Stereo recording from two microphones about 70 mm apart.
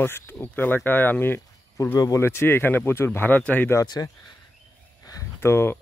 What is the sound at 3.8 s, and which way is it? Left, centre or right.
Speech, left.